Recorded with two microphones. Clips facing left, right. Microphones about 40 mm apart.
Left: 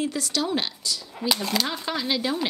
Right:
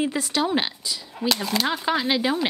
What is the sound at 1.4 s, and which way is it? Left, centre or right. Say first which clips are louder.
Speech: right 2 dB; centre.